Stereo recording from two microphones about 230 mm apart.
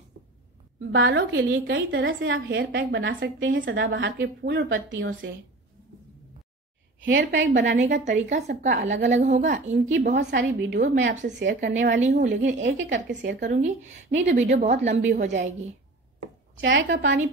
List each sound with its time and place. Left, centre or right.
0.7 s a woman's voice: right
2.6 s a woman's voice: right
2.9 s a woman's voice: right
7.0 s a woman's voice: right
8.0 s a woman's voice: right
9.9 s a woman's voice: right
11.4 s a woman's voice: right
12.6 s a woman's voice: right
13.4 s a woman's voice: right
16.6 s a woman's voice: right